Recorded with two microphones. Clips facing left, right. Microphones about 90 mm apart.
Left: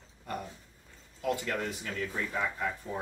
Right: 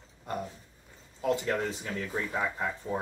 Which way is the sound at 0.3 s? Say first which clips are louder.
Right 3 dB; 20° right (ahead or behind).